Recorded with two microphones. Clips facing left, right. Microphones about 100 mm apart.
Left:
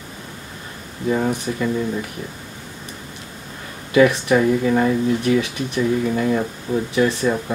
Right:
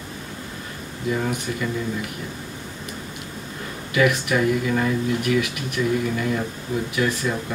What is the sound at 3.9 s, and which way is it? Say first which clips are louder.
Speech: left 6 dB; 30° left (ahead or behind).